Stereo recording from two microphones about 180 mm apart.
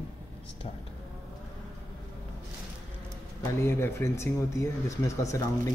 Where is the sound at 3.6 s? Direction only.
15° left (ahead or behind).